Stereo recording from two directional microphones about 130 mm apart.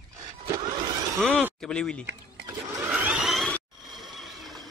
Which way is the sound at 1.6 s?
5° left (ahead or behind).